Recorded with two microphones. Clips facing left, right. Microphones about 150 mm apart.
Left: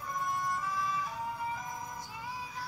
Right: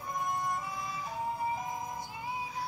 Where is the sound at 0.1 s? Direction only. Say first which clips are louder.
Right 1 dB; 20° right (ahead or behind).